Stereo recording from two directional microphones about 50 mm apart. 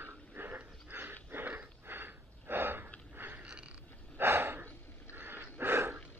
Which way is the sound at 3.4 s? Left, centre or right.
Right.